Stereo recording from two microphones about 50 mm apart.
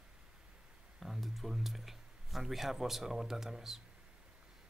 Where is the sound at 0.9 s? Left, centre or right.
Centre.